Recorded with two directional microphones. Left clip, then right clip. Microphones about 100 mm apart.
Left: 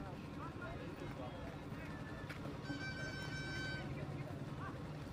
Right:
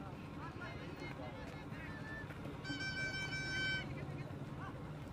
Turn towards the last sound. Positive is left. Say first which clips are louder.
# right 6 dB
turn(degrees=-20)  # may be behind; listen again after turning